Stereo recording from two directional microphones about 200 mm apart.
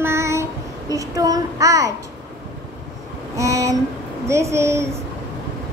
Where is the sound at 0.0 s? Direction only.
15° right (ahead or behind).